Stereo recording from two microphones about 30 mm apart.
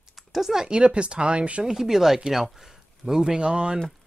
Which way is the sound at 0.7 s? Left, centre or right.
Right.